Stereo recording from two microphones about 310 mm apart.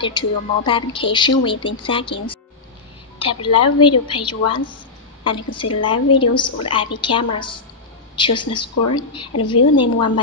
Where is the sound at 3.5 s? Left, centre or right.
Left.